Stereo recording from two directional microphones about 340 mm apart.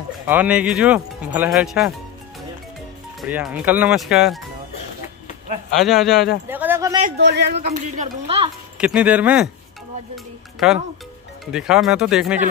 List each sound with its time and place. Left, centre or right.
0.3 s speech: centre
3.2 s speech: centre
5.8 s speech: centre
6.5 s a sound: centre
7.0 s a woman's voice: right
8.7 s speech: centre